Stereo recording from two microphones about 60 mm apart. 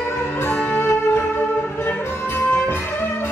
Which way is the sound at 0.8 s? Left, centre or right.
Left.